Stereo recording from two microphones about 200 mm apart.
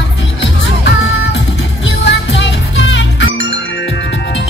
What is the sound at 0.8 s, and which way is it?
Music, 60° left (ahead or behind).